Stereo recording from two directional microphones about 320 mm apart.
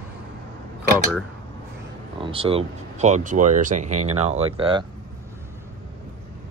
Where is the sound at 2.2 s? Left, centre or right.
Centre.